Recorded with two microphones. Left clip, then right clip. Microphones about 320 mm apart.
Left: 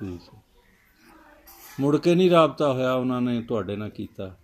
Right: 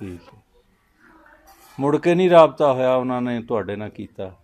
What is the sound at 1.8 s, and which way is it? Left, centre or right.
Speech, right.